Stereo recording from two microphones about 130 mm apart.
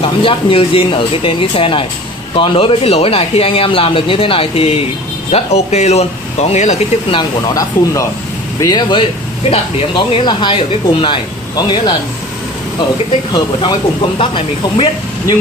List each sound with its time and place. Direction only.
0.0 s speech: 45° left (ahead or behind)
7.4 s speech: 25° left (ahead or behind)
13.3 s speech: 35° left (ahead or behind)